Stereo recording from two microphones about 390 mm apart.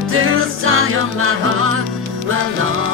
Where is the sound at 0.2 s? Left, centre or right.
Right.